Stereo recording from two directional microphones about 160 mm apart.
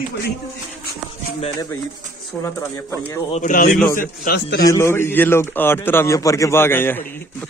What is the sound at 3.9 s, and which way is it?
Speech, 70° left (ahead or behind).